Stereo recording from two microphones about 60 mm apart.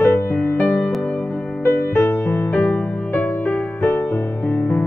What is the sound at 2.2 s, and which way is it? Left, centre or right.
Music, left.